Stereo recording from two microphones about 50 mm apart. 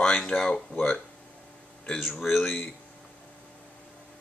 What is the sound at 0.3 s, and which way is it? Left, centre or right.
Speech, centre.